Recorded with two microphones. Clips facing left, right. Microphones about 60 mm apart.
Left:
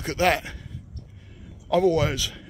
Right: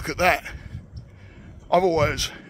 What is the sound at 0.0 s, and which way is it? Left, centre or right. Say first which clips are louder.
Speech: right 1 dB; right.